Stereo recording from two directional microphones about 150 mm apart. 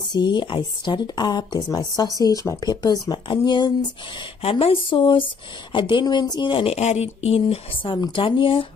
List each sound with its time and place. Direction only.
0.1 s a woman's voice: 30° left (ahead or behind)
4.4 s speech: 40° left (ahead or behind)